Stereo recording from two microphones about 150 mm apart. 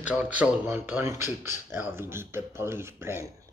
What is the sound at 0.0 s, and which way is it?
Speech, 10° right (ahead or behind).